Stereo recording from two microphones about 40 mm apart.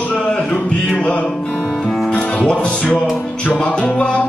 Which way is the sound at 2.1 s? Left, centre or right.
Left.